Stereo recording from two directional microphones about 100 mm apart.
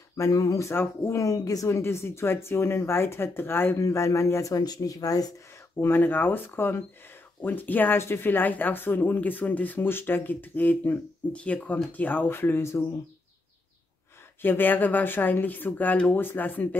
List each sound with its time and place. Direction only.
0.2 s speech: 35° left (ahead or behind)
5.8 s speech: 20° left (ahead or behind)
14.4 s speech: 20° left (ahead or behind)